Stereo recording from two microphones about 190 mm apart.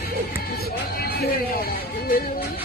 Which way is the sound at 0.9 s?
55° left (ahead or behind).